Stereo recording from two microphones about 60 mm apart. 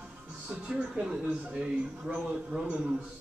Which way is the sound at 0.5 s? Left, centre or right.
Centre.